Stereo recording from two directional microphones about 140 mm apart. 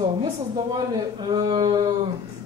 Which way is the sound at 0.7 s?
30° right (ahead or behind).